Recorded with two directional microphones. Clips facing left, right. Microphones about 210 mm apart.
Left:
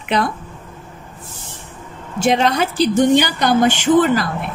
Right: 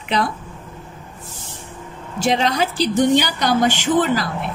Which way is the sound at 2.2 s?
55° left (ahead or behind).